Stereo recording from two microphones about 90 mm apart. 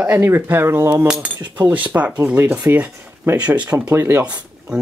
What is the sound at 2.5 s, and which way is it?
Speech, 30° right (ahead or behind).